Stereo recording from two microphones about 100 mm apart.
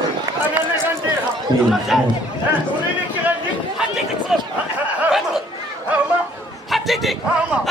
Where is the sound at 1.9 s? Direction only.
5° right (ahead or behind).